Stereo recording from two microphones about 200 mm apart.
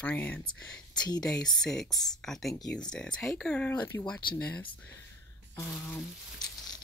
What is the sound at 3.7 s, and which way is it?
Speech, 20° left (ahead or behind).